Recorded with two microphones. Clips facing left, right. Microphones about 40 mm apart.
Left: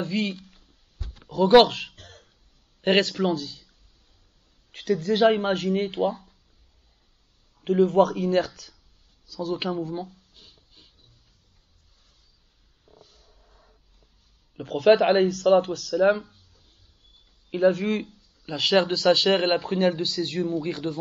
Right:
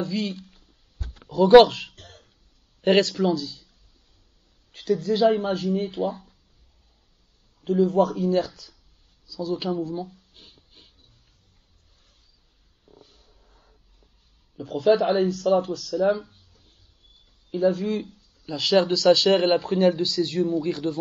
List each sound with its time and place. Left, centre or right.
0.0 s a sound: left
1.6 s a man's voice: left
4.7 s a man's voice: left
7.6 s a man's voice: left
10.3 s a sound: right
13.0 s a sound: right
14.6 s a man's voice: left
17.5 s a man's voice: left
18.0 s speech: left
18.9 s speech: left
19.3 s speech: left